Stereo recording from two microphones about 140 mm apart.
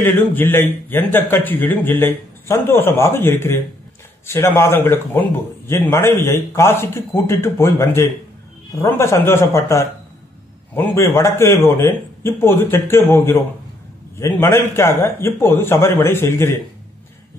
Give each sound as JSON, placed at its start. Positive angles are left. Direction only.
{"t": 0.0, "sound": "a man's voice", "side_deg": 15}